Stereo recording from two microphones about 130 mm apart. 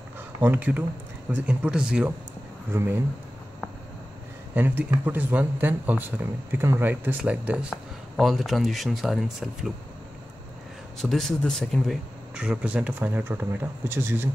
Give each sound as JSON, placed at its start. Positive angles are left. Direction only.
{"t": 0.4, "sound": "speech", "side_deg": -10}
{"t": 2.7, "sound": "speech", "side_deg": -20}
{"t": 4.6, "sound": "speech", "side_deg": -15}
{"t": 11.0, "sound": "speech", "side_deg": 0}